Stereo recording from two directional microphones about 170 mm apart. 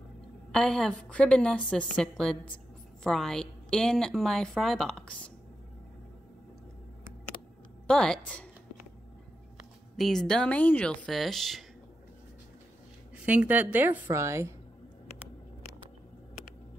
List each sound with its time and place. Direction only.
0.5 s a woman's voice: 5° left (ahead or behind)
7.8 s a woman's voice: 5° left (ahead or behind)
9.6 s speech: centre (ahead or behind)
13.1 s a woman's voice: 10° right (ahead or behind)